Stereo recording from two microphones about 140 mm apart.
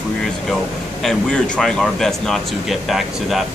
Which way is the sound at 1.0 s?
5° left (ahead or behind).